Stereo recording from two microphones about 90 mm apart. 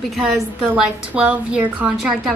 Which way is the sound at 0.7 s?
15° right (ahead or behind).